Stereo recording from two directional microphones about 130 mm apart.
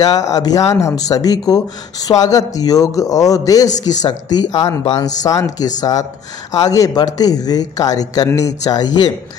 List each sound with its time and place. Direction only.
0.0 s speech: 30° left (ahead or behind)